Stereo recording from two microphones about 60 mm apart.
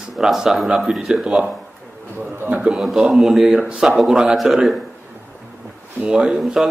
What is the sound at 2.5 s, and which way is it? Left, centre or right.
Speech, centre.